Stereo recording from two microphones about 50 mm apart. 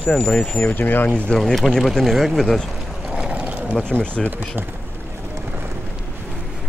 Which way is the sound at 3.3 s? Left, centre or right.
Right.